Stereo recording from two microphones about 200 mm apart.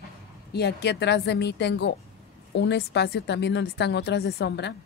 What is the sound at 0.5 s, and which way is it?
Speech, 55° left (ahead or behind).